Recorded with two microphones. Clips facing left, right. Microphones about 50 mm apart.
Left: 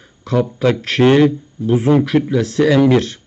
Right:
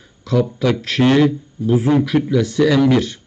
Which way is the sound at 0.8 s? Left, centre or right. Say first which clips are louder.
Left 3 dB; centre.